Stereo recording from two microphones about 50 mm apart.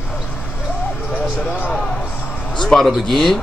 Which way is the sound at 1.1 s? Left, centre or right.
Left.